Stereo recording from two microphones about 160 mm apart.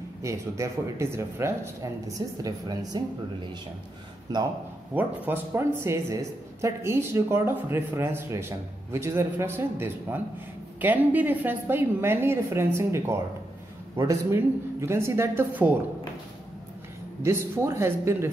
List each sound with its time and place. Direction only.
0.2 s speech: 20° right (ahead or behind)
4.3 s speech: 25° right (ahead or behind)
4.9 s speech: 10° right (ahead or behind)
17.2 s speech: 15° right (ahead or behind)